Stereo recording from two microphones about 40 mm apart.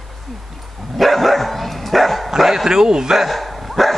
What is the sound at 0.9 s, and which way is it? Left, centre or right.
Dog, centre.